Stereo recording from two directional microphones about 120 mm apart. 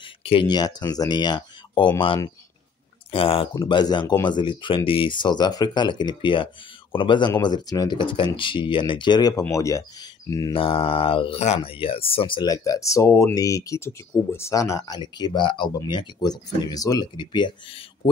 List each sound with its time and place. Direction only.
0.0 s a sound: 50° left (ahead or behind)
0.5 s speech: 35° left (ahead or behind); by 3.4 s 50° left (ahead or behind)
3.6 s speech: 40° left (ahead or behind)
9.4 s speech: 25° left (ahead or behind)
10.5 s speech: 50° left (ahead or behind)
12.4 s speech: 30° left (ahead or behind)